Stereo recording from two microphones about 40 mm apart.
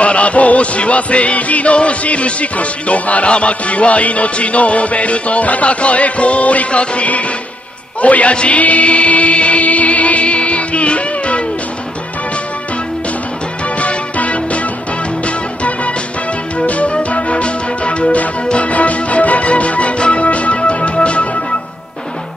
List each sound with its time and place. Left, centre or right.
0.0 s music: left
13.7 s music: left